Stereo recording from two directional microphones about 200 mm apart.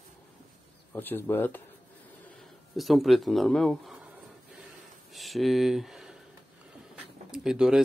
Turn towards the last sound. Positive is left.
turn(degrees=-5)  # may be behind; listen again after turning